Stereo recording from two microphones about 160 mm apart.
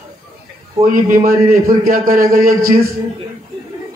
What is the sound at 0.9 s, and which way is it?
A man's voice, 65° right (ahead or behind).